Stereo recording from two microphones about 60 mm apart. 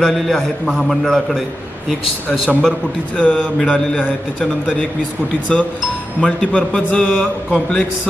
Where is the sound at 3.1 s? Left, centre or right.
Left.